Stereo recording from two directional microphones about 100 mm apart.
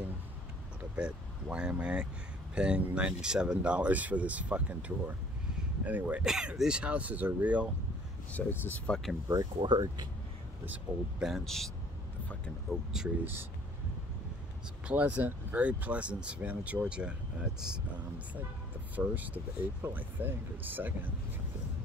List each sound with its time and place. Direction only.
0.9 s speech: 10° right (ahead or behind)
6.2 s speech: 5° right (ahead or behind)
8.3 s speech: 15° left (ahead or behind)
9.6 s speech: 50° right (ahead or behind)
10.6 s speech: 15° right (ahead or behind)
11.2 s speech: centre (ahead or behind)
13.2 s speech: 20° right (ahead or behind)
14.9 s speech: 15° right (ahead or behind)
18.9 s speech: 15° right (ahead or behind)